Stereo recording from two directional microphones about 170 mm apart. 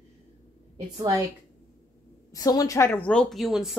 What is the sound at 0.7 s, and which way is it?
Speech, 25° right (ahead or behind).